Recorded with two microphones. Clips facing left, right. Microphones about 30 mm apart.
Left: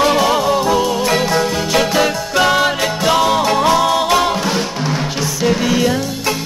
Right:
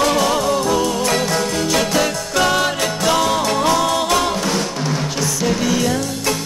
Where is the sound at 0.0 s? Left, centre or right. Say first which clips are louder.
Left 3 dB; centre.